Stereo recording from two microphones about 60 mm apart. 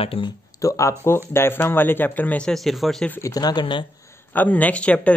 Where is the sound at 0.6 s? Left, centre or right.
Left.